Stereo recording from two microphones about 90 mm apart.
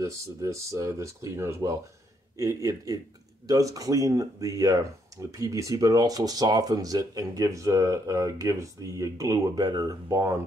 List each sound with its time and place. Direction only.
0.0 s speech: 35° right (ahead or behind)
9.7 s speech: 50° right (ahead or behind)